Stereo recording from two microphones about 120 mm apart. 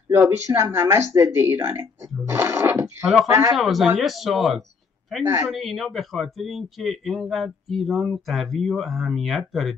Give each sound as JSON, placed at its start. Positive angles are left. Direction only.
{"t": 0.1, "sound": "speech", "side_deg": -20}
{"t": 3.5, "sound": "speech", "side_deg": 0}